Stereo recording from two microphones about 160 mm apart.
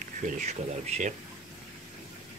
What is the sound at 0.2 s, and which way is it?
Speech, 45° right (ahead or behind).